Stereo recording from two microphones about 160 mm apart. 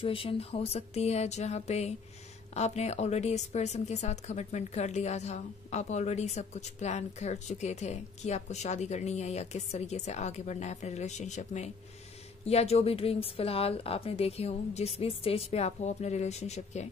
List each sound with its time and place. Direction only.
0.0 s a woman's voice: 35° left (ahead or behind)